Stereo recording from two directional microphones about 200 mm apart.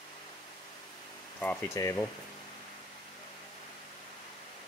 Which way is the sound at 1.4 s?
10° left (ahead or behind).